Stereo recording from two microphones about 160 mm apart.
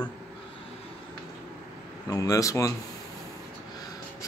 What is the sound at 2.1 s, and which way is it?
Speech, 20° left (ahead or behind).